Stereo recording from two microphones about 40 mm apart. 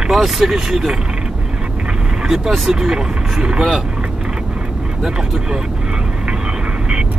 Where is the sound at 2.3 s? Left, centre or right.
Centre.